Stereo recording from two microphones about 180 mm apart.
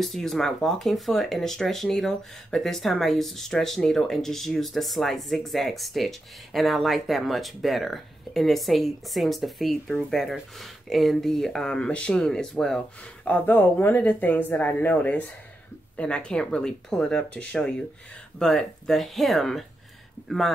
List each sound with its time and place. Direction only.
0.0 s speech: centre (ahead or behind)